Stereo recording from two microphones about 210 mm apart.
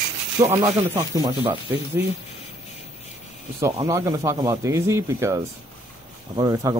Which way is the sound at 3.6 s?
15° right (ahead or behind).